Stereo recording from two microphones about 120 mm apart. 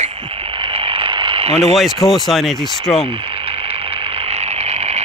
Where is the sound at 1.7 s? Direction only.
Centre (ahead or behind).